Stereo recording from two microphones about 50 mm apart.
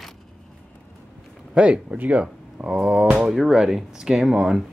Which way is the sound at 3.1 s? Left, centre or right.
Centre.